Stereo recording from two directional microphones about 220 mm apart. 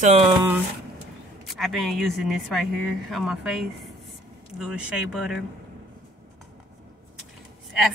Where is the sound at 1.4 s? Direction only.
Centre (ahead or behind).